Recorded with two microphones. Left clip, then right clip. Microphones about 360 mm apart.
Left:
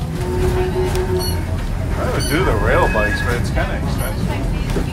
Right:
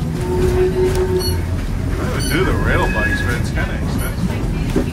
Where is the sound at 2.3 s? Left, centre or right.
Left.